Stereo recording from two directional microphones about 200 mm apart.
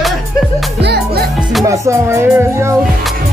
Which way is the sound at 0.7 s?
55° right (ahead or behind).